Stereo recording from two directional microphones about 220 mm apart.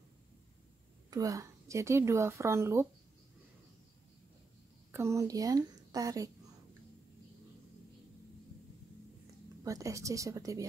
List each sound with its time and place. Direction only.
1.1 s a woman's voice: 15° right (ahead or behind)
4.9 s a woman's voice: 15° right (ahead or behind)
9.6 s a woman's voice: 15° right (ahead or behind)